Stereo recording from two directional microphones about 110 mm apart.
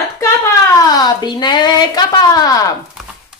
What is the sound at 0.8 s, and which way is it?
Speech, 40° left (ahead or behind).